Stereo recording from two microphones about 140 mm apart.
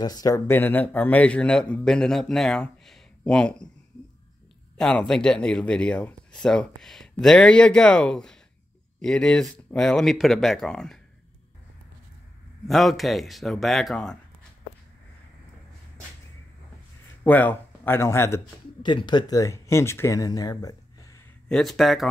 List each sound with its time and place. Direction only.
0.0 s speech: 30° left (ahead or behind)
0.5 s speech: 15° left (ahead or behind)
4.7 s speech: 5° left (ahead or behind)
12.6 s speech: centre (ahead or behind)
17.2 s speech: 10° left (ahead or behind)
18.8 s speech: 30° left (ahead or behind)
21.5 s speech: 5° left (ahead or behind)